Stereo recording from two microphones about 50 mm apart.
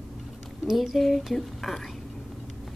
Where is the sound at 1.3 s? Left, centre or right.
Centre.